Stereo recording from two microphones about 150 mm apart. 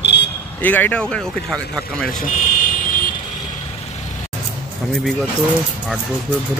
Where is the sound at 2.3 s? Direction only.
60° left (ahead or behind).